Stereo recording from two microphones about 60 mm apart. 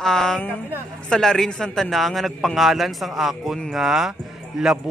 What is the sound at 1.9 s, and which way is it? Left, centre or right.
A man's voice, centre.